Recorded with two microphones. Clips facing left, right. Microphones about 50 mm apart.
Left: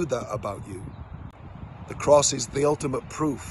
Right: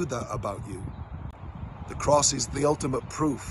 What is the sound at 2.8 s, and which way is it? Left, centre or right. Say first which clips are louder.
Speech: left 1 dB; left.